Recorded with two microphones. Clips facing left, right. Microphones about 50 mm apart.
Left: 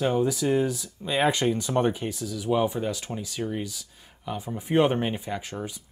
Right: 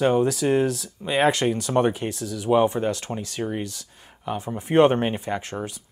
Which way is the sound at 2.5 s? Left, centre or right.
Right.